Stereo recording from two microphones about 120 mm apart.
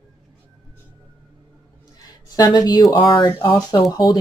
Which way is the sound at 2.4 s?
35° left (ahead or behind).